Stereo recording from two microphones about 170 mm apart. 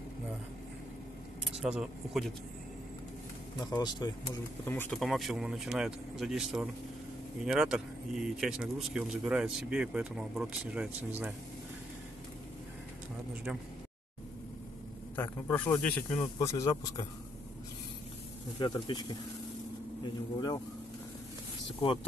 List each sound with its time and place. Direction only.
1.6 s speech: 5° right (ahead or behind)
3.5 s speech: 25° left (ahead or behind)
4.6 s a man's voice: 10° left (ahead or behind)
4.9 s speech: centre (ahead or behind)
15.1 s a man's voice: 10° left (ahead or behind)
16.3 s speech: 20° left (ahead or behind)
18.6 s speech: 25° left (ahead or behind)
20.3 s speech: 25° left (ahead or behind)